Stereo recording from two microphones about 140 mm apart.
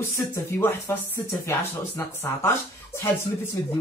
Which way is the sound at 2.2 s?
20° left (ahead or behind).